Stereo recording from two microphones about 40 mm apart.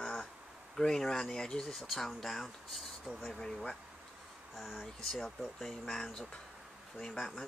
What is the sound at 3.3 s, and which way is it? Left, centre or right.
Speech, centre.